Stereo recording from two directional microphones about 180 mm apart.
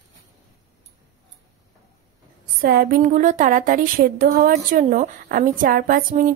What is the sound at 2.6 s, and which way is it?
A woman's voice, 55° right (ahead or behind).